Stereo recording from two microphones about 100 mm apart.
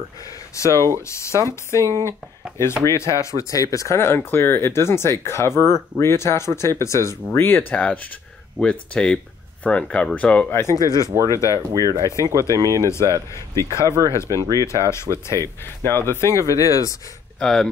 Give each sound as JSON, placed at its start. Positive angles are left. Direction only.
{"t": 0.7, "sound": "speech", "side_deg": -35}
{"t": 1.0, "sound": "speech", "side_deg": 30}
{"t": 10.5, "sound": "speech", "side_deg": 30}
{"t": 11.5, "sound": "speech", "side_deg": -40}
{"t": 13.6, "sound": "speech", "side_deg": 30}
{"t": 17.4, "sound": "speech", "side_deg": 5}